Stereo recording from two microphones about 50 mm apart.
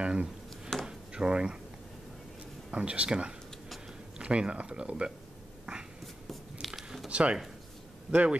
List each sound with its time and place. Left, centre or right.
0.0 s speech: right
0.8 s a sound: centre
2.7 s speech: right
5.7 s a sound: centre
6.7 s squish: centre
7.1 s speech: right